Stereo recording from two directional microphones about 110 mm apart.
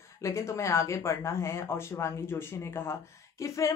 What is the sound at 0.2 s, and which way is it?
A woman's voice, 25° left (ahead or behind).